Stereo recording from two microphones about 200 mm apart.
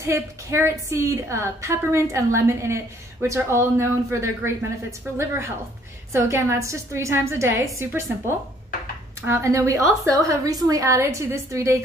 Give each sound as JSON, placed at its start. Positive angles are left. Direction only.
{"t": 0.0, "sound": "a woman's voice", "side_deg": -15}